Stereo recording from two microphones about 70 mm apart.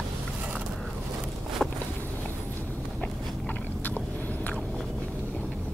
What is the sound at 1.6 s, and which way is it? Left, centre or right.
Walk, centre.